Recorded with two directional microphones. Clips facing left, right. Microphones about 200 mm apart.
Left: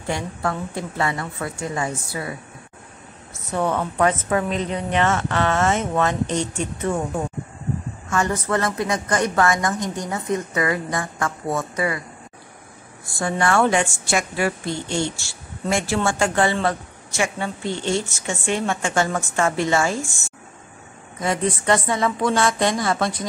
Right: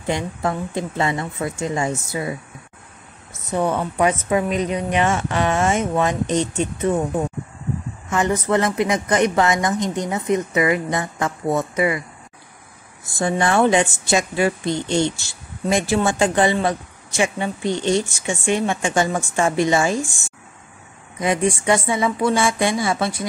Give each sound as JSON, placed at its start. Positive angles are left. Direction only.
{"t": 0.0, "sound": "a woman's voice", "side_deg": -20}
{"t": 3.5, "sound": "a woman's voice", "side_deg": -15}
{"t": 8.1, "sound": "a woman's voice", "side_deg": -20}
{"t": 13.0, "sound": "a woman's voice", "side_deg": -20}